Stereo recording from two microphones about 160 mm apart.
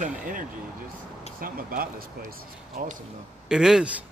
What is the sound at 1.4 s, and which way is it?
Speech, 60° right (ahead or behind).